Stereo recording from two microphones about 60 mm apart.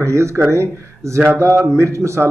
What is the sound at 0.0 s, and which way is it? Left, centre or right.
A man's voice, right.